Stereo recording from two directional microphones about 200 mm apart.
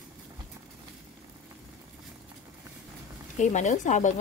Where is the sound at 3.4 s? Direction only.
35° left (ahead or behind).